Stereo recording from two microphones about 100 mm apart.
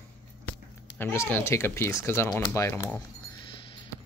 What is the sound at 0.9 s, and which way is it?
A woman's voice, 25° left (ahead or behind).